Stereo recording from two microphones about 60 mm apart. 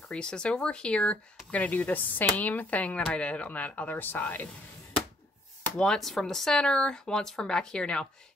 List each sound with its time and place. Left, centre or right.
0.1 s speech: centre
5.8 s speech: centre